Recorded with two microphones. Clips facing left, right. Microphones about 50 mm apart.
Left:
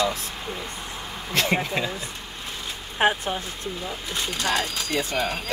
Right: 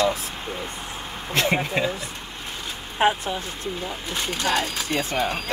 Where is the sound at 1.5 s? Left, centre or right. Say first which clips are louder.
Right 2 dB; centre.